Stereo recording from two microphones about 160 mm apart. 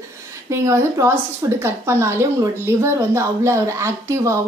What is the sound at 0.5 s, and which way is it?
Speech, 15° right (ahead or behind).